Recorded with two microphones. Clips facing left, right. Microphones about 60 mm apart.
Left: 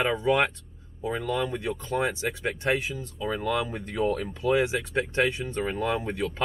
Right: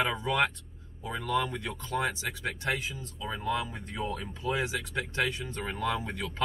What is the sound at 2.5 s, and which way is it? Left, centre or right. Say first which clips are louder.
Speech: left 5 dB; left.